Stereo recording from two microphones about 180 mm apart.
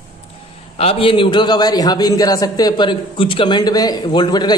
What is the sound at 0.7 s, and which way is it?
A man's voice, 30° left (ahead or behind).